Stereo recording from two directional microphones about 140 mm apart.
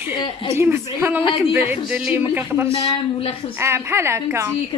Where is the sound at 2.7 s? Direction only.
45° left (ahead or behind).